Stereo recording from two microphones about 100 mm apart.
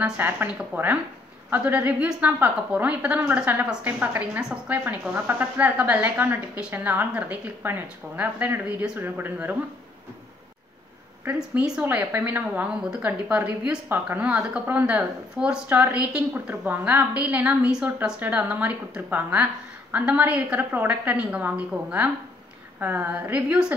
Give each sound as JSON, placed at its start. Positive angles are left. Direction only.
{"t": 0.2, "sound": "a woman's voice", "side_deg": -20}
{"t": 11.3, "sound": "a woman's voice", "side_deg": -5}